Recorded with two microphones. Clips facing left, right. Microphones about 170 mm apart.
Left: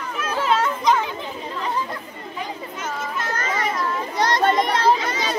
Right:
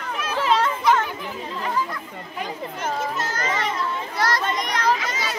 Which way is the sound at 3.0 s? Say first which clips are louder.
Right 1 dB; 40° right (ahead or behind).